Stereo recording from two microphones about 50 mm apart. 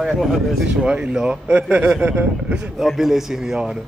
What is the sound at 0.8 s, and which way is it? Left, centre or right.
A man's voice, right.